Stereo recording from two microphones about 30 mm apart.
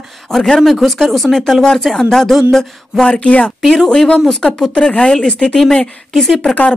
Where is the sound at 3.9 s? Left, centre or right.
Left.